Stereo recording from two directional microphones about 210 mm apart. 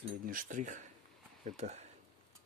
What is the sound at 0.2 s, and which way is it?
Speech, 40° right (ahead or behind).